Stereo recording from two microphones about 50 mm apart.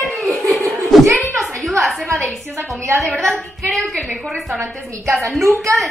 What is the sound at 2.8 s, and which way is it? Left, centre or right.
Speech, right.